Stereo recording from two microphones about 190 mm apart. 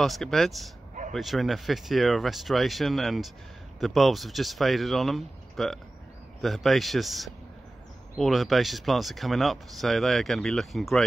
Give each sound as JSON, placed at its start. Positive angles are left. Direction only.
{"t": 0.0, "sound": "speech", "side_deg": 0}